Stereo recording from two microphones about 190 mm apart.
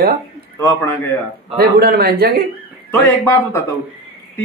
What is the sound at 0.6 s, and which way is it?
Speech, 15° left (ahead or behind).